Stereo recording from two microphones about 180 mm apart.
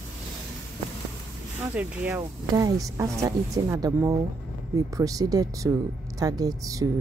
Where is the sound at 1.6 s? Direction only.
10° right (ahead or behind).